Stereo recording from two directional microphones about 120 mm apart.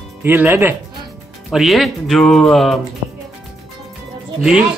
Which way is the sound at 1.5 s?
Centre (ahead or behind).